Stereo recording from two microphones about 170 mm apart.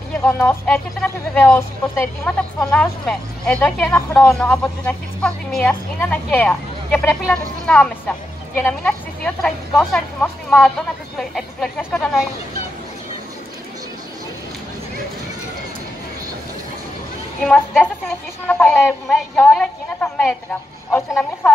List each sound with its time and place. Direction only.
0.3 s a woman's voice: 15° left (ahead or behind)
4.1 s a woman's voice: 15° left (ahead or behind)
4.4 s a woman's voice: 5° left (ahead or behind)
17.4 s a woman's voice: 5° left (ahead or behind)